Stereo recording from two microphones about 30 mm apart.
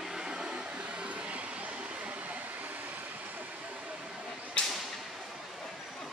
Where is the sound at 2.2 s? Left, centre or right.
Right.